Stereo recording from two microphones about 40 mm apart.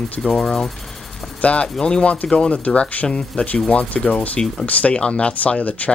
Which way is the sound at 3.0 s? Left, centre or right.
Centre.